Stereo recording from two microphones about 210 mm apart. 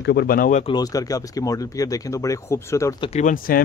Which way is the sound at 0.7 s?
20° left (ahead or behind).